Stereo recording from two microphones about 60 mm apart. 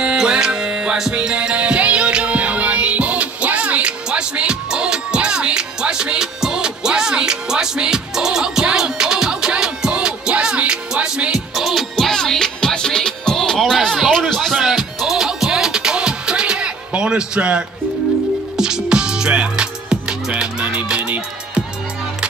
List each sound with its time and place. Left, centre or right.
0.0 s music: centre
11.3 s music: centre